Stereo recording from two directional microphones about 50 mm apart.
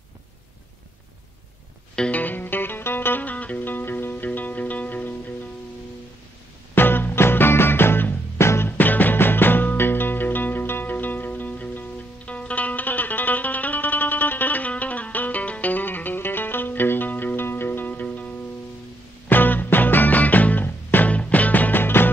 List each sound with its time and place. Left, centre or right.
2.0 s music: left
6.7 s music: left
8.6 s music: left
19.2 s music: left
21.1 s music: left